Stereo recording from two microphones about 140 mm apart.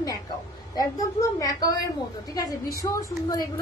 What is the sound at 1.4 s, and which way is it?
A woman's voice, 25° left (ahead or behind).